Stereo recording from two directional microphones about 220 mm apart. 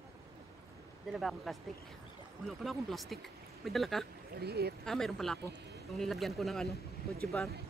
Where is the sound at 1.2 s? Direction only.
Centre (ahead or behind).